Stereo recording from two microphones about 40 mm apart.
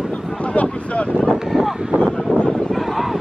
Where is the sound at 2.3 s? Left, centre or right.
Left.